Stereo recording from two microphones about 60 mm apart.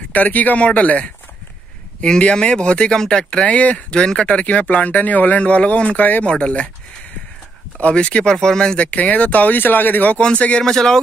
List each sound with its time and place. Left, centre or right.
0.1 s speech: left
7.8 s speech: centre
8.8 s speech: left
10.1 s speech: centre